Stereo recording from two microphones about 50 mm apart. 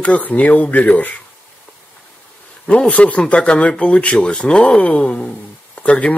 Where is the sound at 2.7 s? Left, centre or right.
Left.